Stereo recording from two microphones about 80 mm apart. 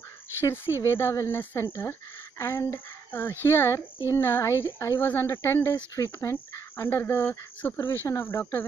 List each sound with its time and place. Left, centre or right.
0.4 s speech: left